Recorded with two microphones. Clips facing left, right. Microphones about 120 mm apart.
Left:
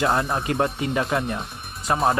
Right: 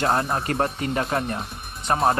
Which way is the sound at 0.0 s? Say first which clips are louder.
Even; 30° right (ahead or behind).